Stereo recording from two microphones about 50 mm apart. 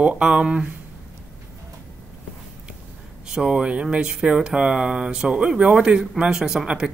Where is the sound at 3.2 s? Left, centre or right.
Centre.